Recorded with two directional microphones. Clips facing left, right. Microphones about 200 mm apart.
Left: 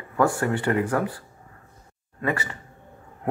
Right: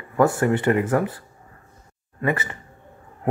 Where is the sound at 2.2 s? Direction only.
20° right (ahead or behind).